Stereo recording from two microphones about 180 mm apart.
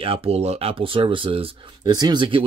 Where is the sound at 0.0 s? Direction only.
30° right (ahead or behind).